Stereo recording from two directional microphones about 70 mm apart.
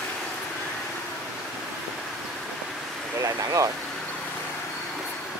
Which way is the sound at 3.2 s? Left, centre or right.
Right.